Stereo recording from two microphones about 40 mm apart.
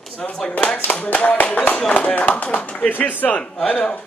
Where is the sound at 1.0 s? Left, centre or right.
Left.